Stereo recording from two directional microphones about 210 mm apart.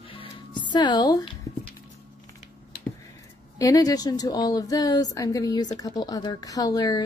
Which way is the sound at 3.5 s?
15° left (ahead or behind).